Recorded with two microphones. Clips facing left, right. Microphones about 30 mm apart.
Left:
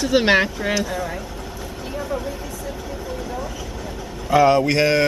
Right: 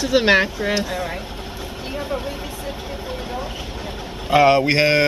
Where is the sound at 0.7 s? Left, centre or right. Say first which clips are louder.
Even; right.